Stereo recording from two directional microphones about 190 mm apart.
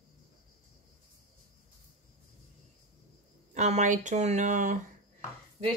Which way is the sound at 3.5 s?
35° right (ahead or behind).